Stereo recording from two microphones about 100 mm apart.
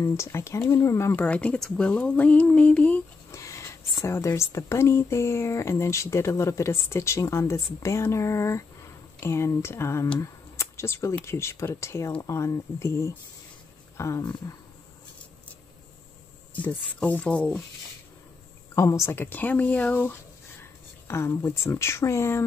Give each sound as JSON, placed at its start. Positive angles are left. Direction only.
{"t": 0.0, "sound": "speech", "side_deg": 30}
{"t": 1.1, "sound": "speech", "side_deg": 15}
{"t": 3.3, "sound": "a sound", "side_deg": 30}
{"t": 4.0, "sound": "speech", "side_deg": 30}
{"t": 16.6, "sound": "speech", "side_deg": 15}
{"t": 18.8, "sound": "speech", "side_deg": 30}